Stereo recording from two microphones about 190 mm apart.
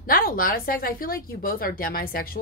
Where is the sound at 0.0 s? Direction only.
50° left (ahead or behind).